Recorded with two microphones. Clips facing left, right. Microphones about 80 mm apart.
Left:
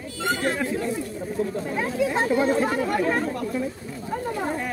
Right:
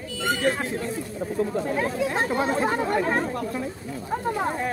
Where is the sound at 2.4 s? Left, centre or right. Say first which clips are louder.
Left 1 dB; right.